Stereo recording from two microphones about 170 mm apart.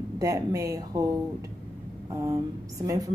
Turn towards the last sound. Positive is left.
turn(degrees=-20)  # may be behind; listen again after turning